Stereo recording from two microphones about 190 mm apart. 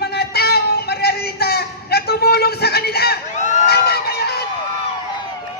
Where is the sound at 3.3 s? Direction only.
40° left (ahead or behind).